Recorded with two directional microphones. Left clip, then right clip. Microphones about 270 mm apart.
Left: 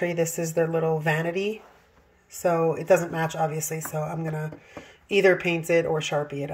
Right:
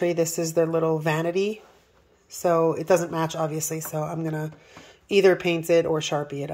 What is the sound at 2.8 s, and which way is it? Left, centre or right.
Speech, centre.